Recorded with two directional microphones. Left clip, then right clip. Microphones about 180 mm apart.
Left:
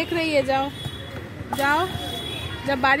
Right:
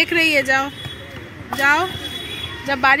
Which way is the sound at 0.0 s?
Centre (ahead or behind).